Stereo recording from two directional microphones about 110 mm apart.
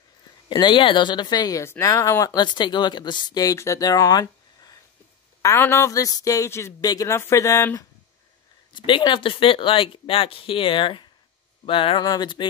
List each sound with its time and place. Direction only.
0.5 s speech: 45° left (ahead or behind)
1.6 s speech: 25° left (ahead or behind)
2.3 s speech: 45° left (ahead or behind)
8.7 s speech: 50° left (ahead or behind)
12.0 s speech: 40° left (ahead or behind)